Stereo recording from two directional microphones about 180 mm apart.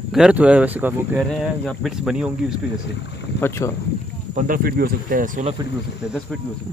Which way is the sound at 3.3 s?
15° left (ahead or behind).